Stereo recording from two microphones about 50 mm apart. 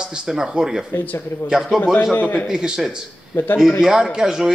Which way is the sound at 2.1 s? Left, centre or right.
Left.